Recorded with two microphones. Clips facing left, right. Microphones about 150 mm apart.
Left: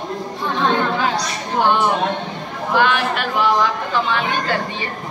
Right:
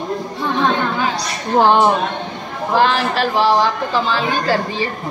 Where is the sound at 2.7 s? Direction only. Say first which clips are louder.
Right 2 dB; 35° right (ahead or behind).